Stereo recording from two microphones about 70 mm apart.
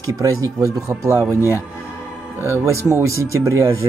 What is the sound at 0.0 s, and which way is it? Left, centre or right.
Speech, right.